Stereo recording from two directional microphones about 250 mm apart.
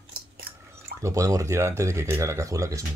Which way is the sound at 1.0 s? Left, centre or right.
Centre.